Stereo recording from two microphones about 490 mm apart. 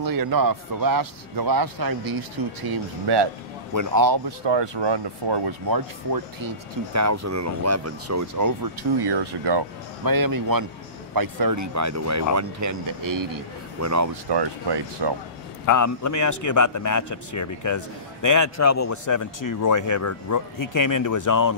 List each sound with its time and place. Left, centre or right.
0.0 s a man's voice: right
3.7 s speech: right
4.5 s speech: right
9.0 s a man's voice: right
14.3 s speech: right
15.6 s a man's voice: left